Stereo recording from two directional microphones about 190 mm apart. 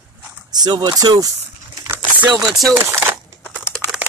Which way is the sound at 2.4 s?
Centre (ahead or behind).